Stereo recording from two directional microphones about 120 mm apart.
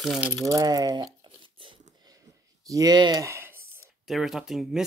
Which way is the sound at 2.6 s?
30° right (ahead or behind).